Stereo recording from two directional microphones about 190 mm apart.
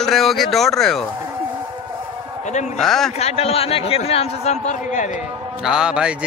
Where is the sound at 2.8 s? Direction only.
Centre (ahead or behind).